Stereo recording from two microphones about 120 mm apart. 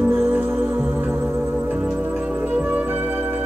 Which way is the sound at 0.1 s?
20° right (ahead or behind).